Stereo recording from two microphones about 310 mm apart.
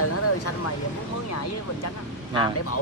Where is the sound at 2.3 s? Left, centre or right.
Left.